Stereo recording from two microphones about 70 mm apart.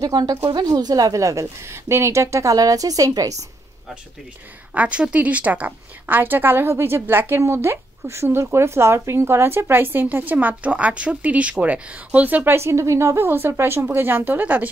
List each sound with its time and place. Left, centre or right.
0.0 s a woman's voice: right
2.5 s a woman's voice: right
4.7 s a woman's voice: centre
12.5 s a woman's voice: right